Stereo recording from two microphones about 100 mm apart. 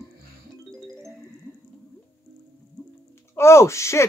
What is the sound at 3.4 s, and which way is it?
Speech, 25° left (ahead or behind).